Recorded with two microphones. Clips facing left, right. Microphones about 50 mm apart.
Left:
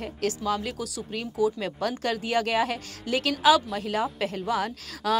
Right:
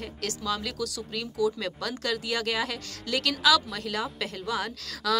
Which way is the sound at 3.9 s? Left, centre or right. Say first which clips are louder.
Left 5 dB; left.